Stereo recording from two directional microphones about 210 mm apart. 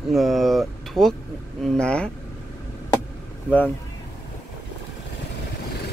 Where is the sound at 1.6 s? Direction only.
5° left (ahead or behind).